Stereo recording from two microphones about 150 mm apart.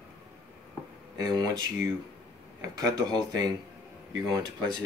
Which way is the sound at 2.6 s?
25° right (ahead or behind).